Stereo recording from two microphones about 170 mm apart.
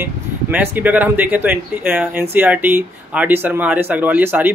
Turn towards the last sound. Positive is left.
turn(degrees=-10)  # may be behind; listen again after turning